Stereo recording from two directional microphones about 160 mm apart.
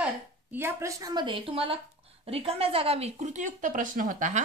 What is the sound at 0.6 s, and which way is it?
A woman's voice, 15° right (ahead or behind).